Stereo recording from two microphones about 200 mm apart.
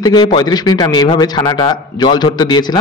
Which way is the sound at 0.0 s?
25° left (ahead or behind).